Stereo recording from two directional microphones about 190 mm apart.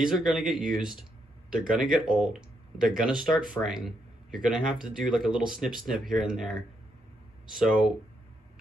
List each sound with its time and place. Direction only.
0.0 s speech: centre (ahead or behind)
7.5 s speech: centre (ahead or behind)